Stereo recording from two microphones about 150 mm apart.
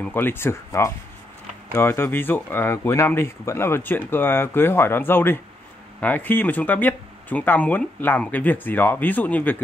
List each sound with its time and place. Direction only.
0.0 s speech: 15° left (ahead or behind)